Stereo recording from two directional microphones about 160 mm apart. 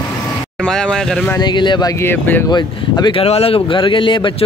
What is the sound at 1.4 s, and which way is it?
Speech, 30° left (ahead or behind).